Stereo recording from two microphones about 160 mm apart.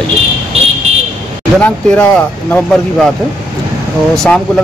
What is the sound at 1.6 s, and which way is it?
Speech, 10° left (ahead or behind).